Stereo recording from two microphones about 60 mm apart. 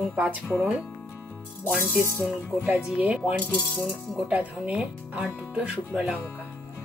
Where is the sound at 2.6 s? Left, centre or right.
Right.